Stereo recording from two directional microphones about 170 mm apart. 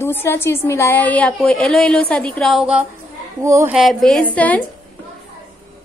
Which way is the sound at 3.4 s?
15° right (ahead or behind).